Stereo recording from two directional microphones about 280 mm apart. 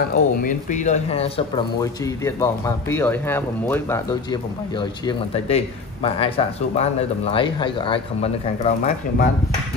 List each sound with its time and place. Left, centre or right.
0.1 s speech: left